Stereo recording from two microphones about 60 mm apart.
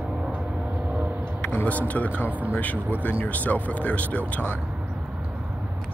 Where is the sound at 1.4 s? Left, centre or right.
Left.